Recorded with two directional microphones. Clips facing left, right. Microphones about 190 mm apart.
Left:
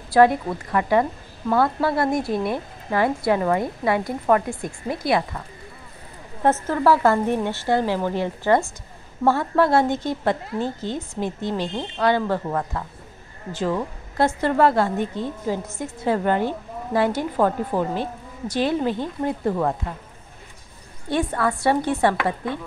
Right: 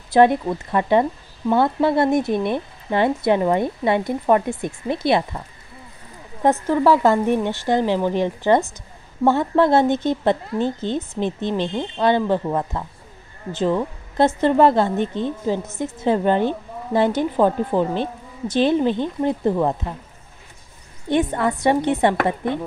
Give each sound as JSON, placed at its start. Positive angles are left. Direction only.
{"t": 0.1, "sound": "speech", "side_deg": -25}
{"t": 6.4, "sound": "a woman's voice", "side_deg": -15}
{"t": 21.1, "sound": "speech", "side_deg": -20}